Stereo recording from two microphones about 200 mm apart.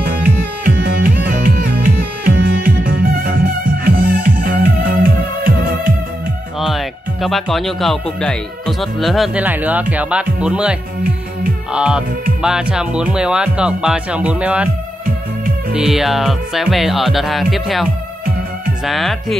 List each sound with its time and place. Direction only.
0.0 s music: 45° right (ahead or behind)
6.6 s speech: centre (ahead or behind)
15.7 s speech: 5° right (ahead or behind)
18.9 s speech: centre (ahead or behind)